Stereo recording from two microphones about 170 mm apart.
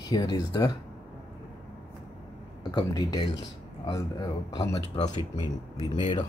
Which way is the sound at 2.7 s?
25° left (ahead or behind).